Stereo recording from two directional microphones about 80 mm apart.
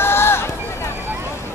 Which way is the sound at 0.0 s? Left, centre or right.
Left.